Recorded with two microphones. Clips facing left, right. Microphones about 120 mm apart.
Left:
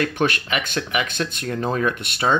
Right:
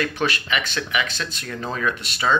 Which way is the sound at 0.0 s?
50° left (ahead or behind).